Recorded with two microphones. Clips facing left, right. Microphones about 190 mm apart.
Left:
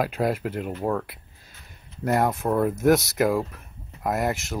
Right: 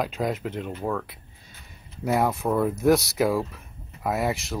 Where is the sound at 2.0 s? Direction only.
Centre (ahead or behind).